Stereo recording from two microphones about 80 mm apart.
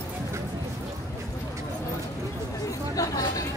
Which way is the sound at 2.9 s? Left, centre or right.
Left.